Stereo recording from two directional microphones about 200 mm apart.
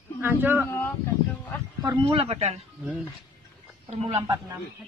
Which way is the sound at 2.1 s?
30° right (ahead or behind).